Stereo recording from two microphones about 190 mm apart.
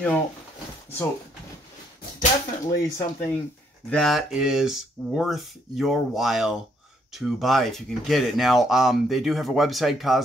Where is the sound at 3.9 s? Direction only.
Centre (ahead or behind).